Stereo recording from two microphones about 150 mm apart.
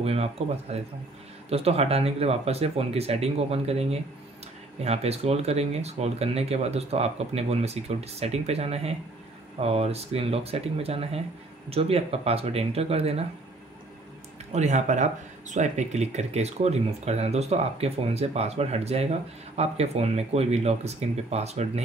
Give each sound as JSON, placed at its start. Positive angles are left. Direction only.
{"t": 0.0, "sound": "speech", "side_deg": -40}
{"t": 14.5, "sound": "speech", "side_deg": -50}